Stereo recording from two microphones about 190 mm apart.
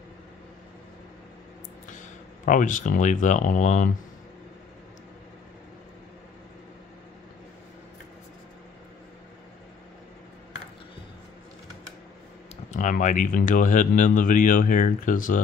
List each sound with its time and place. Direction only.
1.9 s speech: 40° left (ahead or behind)
12.7 s speech: 40° left (ahead or behind)